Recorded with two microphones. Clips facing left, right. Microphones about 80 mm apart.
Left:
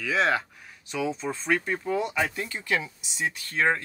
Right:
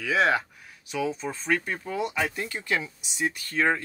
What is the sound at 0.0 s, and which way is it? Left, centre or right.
Speech, centre.